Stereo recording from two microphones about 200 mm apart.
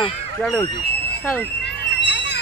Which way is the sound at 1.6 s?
55° left (ahead or behind).